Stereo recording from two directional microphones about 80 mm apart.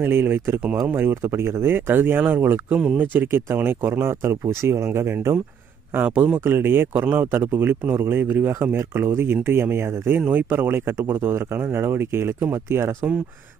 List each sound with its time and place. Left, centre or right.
0.0 s speech: right